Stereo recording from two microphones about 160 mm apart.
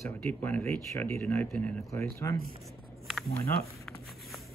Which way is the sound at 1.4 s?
5° left (ahead or behind).